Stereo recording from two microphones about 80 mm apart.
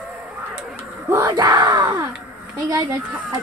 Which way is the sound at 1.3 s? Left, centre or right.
Right.